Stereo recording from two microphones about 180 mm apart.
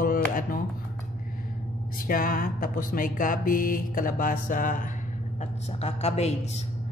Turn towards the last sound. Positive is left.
turn(degrees=35)  # may be behind; listen again after turning